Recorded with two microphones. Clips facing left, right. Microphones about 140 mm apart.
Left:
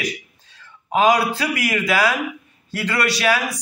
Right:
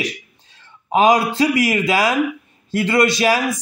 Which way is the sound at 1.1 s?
30° right (ahead or behind).